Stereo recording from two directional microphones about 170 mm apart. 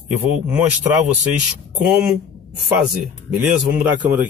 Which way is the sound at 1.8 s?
5° right (ahead or behind).